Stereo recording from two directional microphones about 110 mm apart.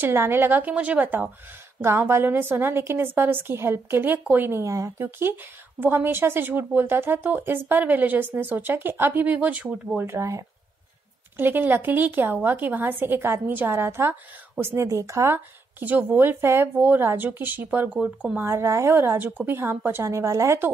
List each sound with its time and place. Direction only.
0.0 s a woman's voice: 20° right (ahead or behind)